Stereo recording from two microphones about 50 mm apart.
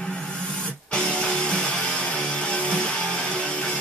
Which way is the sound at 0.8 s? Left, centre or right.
Centre.